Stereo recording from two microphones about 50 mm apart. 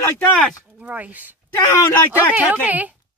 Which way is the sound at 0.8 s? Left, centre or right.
Right.